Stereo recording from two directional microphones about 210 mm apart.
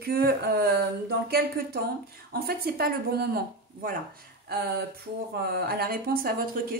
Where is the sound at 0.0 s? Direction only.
50° right (ahead or behind).